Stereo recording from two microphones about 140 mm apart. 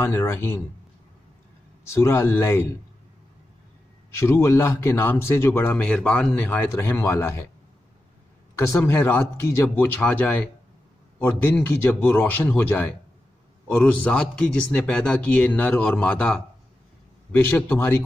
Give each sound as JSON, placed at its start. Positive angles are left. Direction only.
{"t": 0.0, "sound": "a man's voice", "side_deg": 15}
{"t": 2.0, "sound": "a man's voice", "side_deg": 20}
{"t": 4.1, "sound": "a man's voice", "side_deg": 20}
{"t": 8.5, "sound": "a man's voice", "side_deg": 20}